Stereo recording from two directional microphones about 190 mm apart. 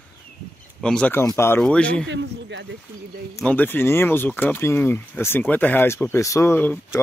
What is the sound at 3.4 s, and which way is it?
Speech, 10° left (ahead or behind).